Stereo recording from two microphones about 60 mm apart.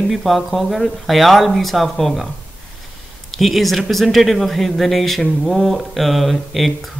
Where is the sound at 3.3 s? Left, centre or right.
Centre.